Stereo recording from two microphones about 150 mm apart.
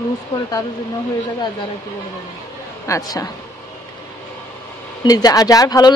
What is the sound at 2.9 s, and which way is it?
Speech, 25° left (ahead or behind).